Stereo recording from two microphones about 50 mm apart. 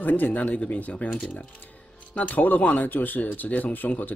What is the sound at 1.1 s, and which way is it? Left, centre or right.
Speech, centre.